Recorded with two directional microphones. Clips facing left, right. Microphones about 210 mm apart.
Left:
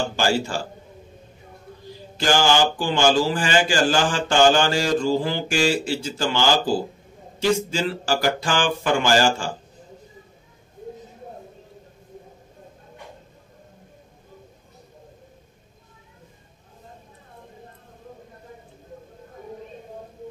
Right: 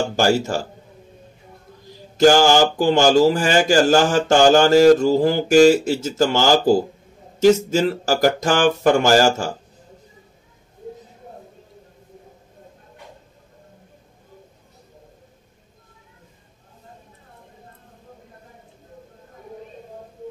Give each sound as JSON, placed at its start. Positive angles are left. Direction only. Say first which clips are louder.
{"t": 0.1, "sound": "speech", "louder": "right 4 dB", "side_deg": -45}
{"t": 2.1, "sound": "speech", "louder": "right 6 dB", "side_deg": -40}